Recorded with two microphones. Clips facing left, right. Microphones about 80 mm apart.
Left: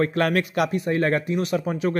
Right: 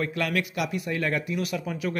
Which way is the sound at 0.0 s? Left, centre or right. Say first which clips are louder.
Left 6 dB; left.